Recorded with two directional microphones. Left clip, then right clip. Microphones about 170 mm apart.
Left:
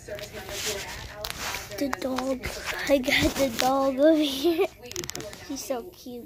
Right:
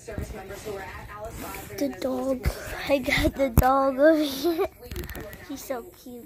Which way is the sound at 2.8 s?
30° left (ahead or behind).